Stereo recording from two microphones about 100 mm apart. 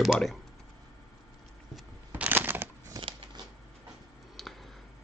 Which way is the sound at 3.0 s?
60° right (ahead or behind).